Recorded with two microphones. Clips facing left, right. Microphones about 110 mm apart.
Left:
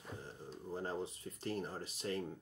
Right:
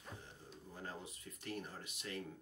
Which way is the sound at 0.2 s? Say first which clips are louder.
Left 7 dB; 35° left (ahead or behind).